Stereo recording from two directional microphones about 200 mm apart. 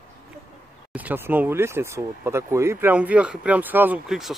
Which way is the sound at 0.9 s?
10° right (ahead or behind).